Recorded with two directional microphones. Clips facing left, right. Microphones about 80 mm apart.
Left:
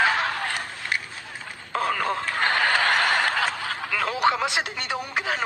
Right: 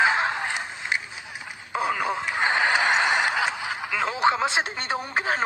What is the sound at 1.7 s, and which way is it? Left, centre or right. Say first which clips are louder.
Snicker: left 1 dB; centre.